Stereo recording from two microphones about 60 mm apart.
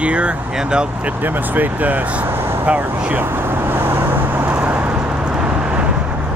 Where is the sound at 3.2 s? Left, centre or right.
Right; by 5.9 s centre.